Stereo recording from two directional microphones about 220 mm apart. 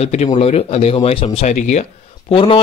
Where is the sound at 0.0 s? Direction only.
30° left (ahead or behind).